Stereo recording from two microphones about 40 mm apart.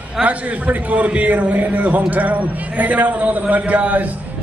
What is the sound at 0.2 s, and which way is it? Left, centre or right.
A man's voice, right.